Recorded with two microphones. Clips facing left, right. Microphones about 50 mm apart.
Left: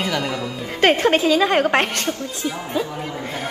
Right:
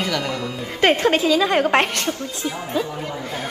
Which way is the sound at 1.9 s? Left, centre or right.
Left.